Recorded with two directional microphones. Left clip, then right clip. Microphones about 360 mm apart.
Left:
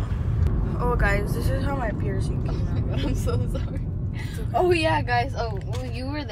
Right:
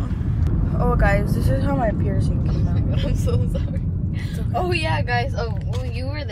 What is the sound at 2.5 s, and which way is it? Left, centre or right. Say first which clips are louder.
Speech: right 4 dB; left.